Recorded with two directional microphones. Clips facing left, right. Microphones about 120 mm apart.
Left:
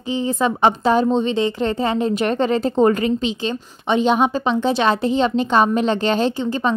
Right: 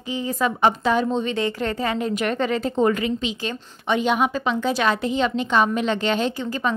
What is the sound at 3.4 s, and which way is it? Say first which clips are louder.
A woman's voice: left 4 dB; 25° left (ahead or behind).